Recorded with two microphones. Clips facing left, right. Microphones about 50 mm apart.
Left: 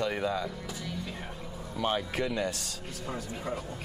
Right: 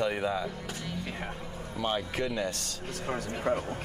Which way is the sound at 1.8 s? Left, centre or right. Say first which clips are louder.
Left 1 dB; centre.